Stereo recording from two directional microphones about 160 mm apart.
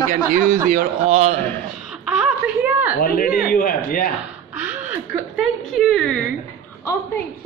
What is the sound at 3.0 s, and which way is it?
Speech, 65° left (ahead or behind).